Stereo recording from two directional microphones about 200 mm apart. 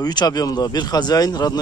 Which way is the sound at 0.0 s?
20° left (ahead or behind).